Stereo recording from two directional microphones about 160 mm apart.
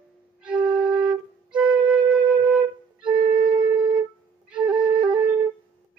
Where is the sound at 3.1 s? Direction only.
30° right (ahead or behind).